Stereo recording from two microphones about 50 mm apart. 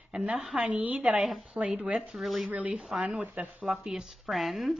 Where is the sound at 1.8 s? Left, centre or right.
Right.